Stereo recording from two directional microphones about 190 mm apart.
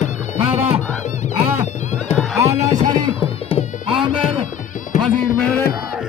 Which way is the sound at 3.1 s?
30° left (ahead or behind).